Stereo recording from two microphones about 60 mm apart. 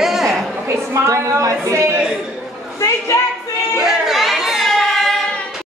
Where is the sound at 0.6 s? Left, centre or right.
Right.